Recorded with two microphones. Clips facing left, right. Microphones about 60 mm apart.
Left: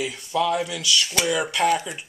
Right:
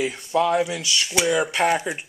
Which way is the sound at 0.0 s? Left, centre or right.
Right.